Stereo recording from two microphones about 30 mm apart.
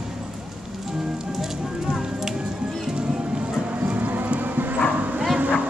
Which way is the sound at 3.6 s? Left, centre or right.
Right.